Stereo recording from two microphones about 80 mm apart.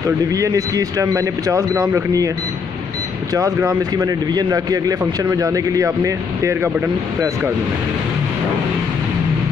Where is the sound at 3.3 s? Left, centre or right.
Right.